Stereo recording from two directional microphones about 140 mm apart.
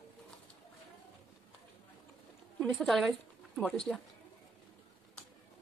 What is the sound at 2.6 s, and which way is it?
A woman's voice, 5° left (ahead or behind).